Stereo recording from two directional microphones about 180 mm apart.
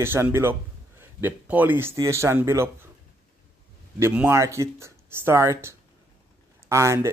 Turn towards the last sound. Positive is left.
turn(degrees=-15)  # may be behind; listen again after turning